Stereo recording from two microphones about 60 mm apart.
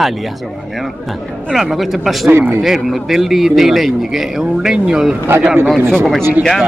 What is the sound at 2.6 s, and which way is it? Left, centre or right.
A man's voice, centre.